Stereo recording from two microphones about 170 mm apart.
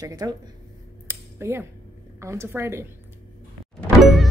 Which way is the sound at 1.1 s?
15° right (ahead or behind).